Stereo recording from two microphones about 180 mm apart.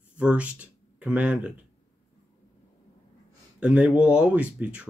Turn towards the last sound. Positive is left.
turn(degrees=-5)  # may be behind; listen again after turning